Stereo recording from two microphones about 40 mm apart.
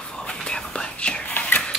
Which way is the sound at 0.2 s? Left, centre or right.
Left.